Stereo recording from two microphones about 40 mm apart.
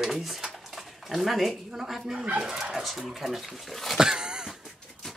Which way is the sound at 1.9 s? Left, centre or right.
Centre.